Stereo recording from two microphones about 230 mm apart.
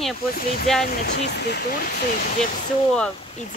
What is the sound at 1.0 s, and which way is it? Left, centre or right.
Speech, left.